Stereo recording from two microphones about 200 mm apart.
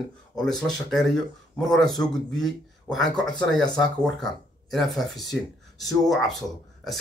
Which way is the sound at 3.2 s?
20° left (ahead or behind).